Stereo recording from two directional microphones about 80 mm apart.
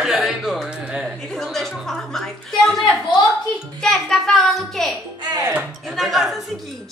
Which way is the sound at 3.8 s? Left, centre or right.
Centre.